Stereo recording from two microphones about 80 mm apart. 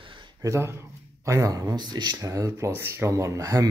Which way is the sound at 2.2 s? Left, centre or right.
Right.